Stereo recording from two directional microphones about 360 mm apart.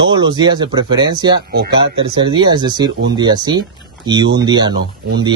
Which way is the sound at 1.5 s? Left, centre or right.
Right.